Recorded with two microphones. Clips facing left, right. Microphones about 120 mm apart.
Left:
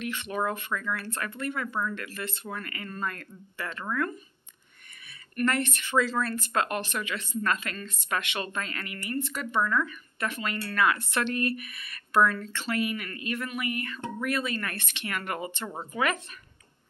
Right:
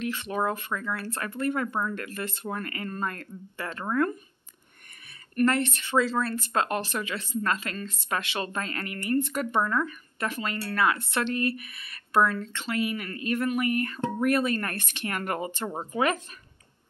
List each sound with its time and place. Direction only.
0.0 s speech: 35° right (ahead or behind)
5.3 s a woman's voice: 30° right (ahead or behind); by 9.6 s 50° right (ahead or behind)
9.7 s a woman's voice: 30° right (ahead or behind)